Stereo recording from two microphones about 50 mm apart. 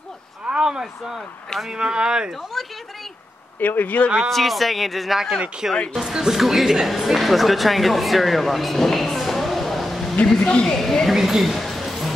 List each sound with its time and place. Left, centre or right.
0.5 s a sound: centre
1.7 s speech: centre
2.6 s speech: centre
3.5 s speech: left
4.3 s speech: centre
5.6 s speech: centre
10.2 s a woman's voice: centre
10.7 s a woman's voice: centre
11.1 s a sound: centre